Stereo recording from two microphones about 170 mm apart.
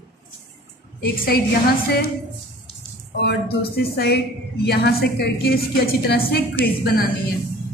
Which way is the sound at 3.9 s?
70° left (ahead or behind).